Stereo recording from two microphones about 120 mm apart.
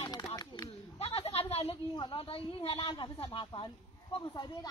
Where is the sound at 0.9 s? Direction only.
55° left (ahead or behind).